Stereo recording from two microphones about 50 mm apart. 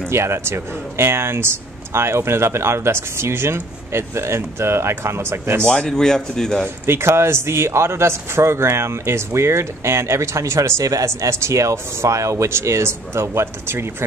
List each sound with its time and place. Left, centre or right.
0.1 s speech: right
5.9 s a man's voice: centre
6.9 s speech: right
11.1 s speech: right